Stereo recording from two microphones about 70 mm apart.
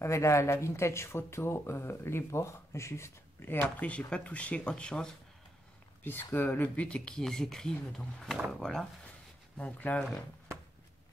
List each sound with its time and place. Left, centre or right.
0.0 s speech: left
3.9 s speech: centre
6.0 s speech: left; by 8.8 s centre
9.6 s speech: left